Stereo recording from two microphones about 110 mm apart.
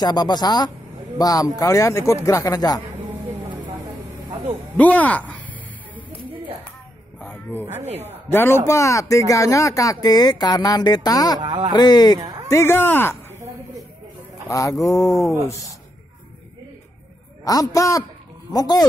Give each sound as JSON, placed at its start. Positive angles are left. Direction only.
{"t": 0.0, "sound": "speech", "side_deg": 40}
{"t": 4.7, "sound": "a sound", "side_deg": 15}
{"t": 7.2, "sound": "a sound", "side_deg": 20}
{"t": 7.9, "sound": "a woman's voice", "side_deg": -20}
{"t": 8.3, "sound": "speech", "side_deg": 20}
{"t": 11.4, "sound": "speech", "side_deg": -40}
{"t": 11.7, "sound": "speech", "side_deg": 40}
{"t": 12.2, "sound": "a sound", "side_deg": -35}
{"t": 12.4, "sound": "speech", "side_deg": 20}
{"t": 14.5, "sound": "speech", "side_deg": 30}
{"t": 17.5, "sound": "speech", "side_deg": 30}